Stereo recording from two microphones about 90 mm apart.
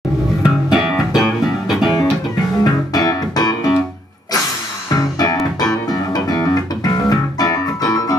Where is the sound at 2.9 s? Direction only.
45° left (ahead or behind).